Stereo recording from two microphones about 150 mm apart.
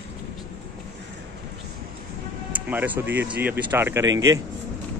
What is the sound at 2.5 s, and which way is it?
Speech, 10° right (ahead or behind).